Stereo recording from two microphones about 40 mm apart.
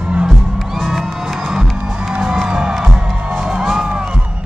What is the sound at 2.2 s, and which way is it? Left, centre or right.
Music, centre.